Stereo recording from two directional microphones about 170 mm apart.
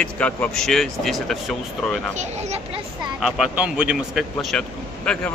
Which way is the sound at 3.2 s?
Centre (ahead or behind).